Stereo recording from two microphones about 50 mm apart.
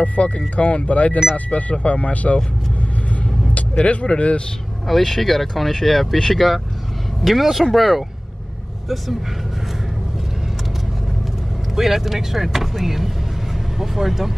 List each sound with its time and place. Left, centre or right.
0.0 s speech: left
3.7 s speech: left
4.8 s speech: centre
11.7 s speech: centre